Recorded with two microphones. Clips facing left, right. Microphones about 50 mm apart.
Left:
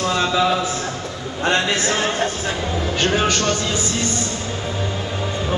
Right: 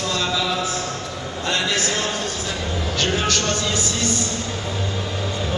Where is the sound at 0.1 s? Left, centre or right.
Left.